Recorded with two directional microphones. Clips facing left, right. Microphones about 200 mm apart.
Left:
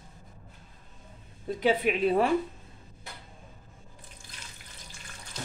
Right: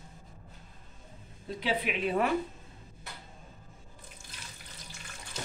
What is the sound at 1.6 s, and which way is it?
Speech, 45° left (ahead or behind).